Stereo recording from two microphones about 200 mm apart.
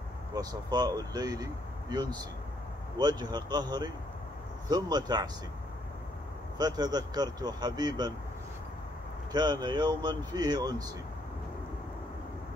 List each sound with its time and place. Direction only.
0.3 s speech: 20° right (ahead or behind)
6.6 s speech: 20° right (ahead or behind)
9.3 s speech: 20° right (ahead or behind)